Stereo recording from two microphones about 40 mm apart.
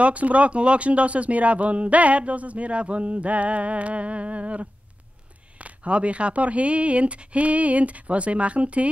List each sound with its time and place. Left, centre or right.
0.0 s speech: right